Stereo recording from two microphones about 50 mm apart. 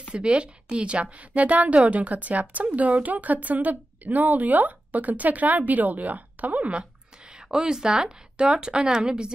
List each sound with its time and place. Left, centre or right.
0.1 s a woman's voice: right